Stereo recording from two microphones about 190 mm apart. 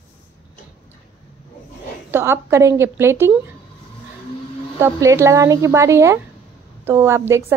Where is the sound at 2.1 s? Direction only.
15° right (ahead or behind).